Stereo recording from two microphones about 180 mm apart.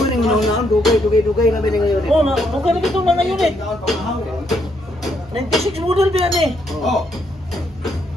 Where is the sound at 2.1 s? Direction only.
Centre (ahead or behind).